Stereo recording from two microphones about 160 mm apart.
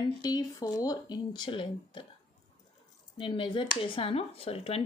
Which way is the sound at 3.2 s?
30° left (ahead or behind).